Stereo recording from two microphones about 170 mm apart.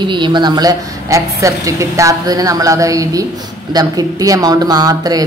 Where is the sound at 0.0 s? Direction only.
25° right (ahead or behind).